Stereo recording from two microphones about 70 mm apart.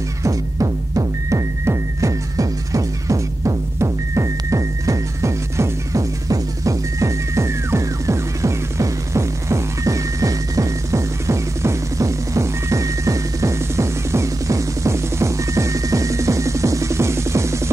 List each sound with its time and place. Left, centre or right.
0.2 s music: right